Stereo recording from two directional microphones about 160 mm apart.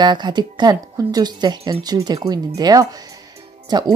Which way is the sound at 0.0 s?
25° right (ahead or behind).